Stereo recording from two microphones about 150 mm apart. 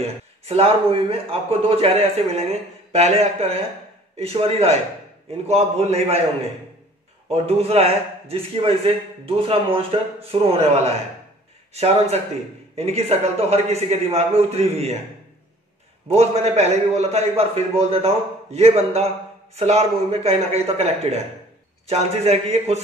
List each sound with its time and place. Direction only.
0.0 s a man's voice: 40° right (ahead or behind)
7.2 s a man's voice: 40° right (ahead or behind)
16.1 s a man's voice: 45° right (ahead or behind)